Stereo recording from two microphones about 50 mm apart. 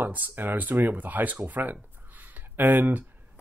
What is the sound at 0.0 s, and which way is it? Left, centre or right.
Speech, right.